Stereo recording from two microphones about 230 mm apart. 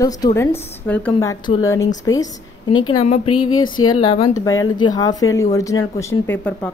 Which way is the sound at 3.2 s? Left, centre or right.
Left.